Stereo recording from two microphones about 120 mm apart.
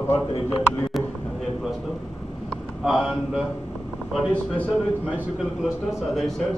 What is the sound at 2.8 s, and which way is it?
Speech, centre (ahead or behind).